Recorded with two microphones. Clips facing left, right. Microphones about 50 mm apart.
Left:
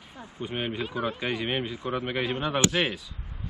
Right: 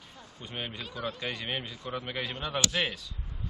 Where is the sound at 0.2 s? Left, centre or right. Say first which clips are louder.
Left 7 dB; centre.